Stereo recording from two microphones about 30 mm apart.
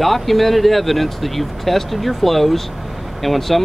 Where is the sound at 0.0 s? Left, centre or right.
Centre.